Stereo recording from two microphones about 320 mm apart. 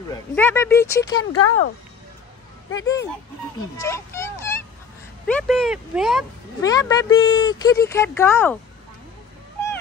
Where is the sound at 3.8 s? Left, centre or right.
Centre.